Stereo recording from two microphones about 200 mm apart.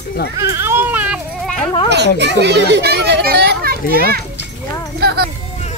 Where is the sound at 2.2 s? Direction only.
60° right (ahead or behind).